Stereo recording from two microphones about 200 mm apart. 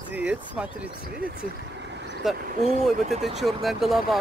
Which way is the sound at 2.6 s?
35° right (ahead or behind).